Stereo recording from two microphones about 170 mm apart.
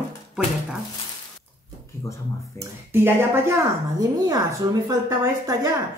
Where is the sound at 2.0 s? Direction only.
20° left (ahead or behind).